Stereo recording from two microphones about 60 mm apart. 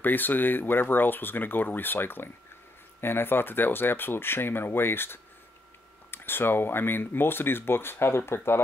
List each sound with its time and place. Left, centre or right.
0.0 s speech: left